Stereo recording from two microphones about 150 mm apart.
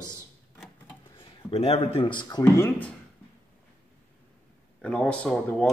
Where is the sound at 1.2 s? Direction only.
40° left (ahead or behind).